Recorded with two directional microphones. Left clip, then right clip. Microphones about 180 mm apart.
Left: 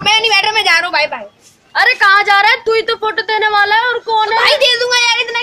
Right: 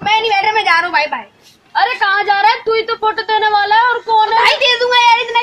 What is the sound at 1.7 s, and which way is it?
A woman's voice, 20° left (ahead or behind).